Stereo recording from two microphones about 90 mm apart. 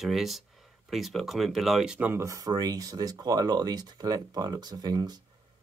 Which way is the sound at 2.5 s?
45° right (ahead or behind).